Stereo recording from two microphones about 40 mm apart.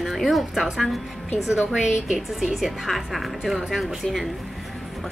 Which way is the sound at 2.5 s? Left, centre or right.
Centre.